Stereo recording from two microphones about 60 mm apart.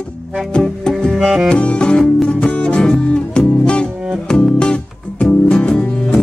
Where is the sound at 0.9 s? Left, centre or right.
Centre.